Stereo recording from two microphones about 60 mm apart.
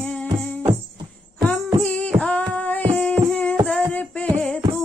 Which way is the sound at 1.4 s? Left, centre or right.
Centre.